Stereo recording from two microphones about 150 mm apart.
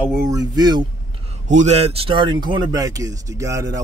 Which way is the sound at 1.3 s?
50° right (ahead or behind).